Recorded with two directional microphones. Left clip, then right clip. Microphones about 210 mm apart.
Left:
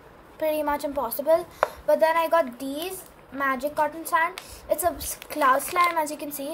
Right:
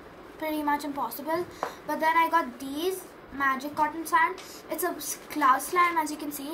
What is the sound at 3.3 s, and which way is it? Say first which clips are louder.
A woman's voice: left 2 dB; 50° left (ahead or behind).